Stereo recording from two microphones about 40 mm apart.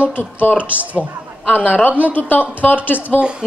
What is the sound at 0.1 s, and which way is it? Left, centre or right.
Speech, left.